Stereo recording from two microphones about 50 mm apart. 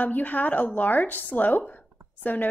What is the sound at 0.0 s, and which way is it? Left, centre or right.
A woman's voice, left.